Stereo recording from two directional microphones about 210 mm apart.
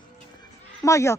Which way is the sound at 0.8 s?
15° left (ahead or behind).